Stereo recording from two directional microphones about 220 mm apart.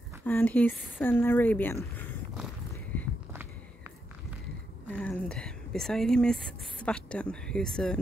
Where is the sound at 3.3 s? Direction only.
10° right (ahead or behind).